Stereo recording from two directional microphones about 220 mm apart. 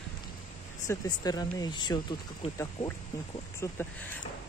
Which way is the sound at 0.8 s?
15° left (ahead or behind).